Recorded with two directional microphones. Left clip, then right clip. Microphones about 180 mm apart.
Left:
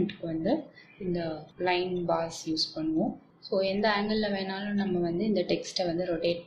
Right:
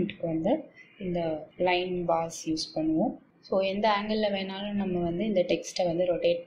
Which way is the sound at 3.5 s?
5° right (ahead or behind).